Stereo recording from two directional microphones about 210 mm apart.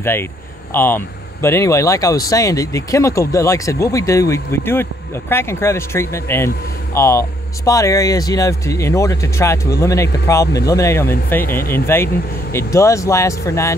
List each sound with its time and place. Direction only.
0.0 s speech: 10° left (ahead or behind)